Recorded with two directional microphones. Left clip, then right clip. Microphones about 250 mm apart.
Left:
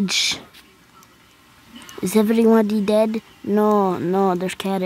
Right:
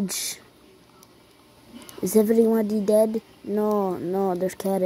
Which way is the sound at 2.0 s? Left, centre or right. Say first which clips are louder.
Left 2 dB; left.